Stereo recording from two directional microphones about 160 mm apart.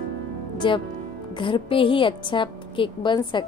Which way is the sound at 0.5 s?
30° left (ahead or behind).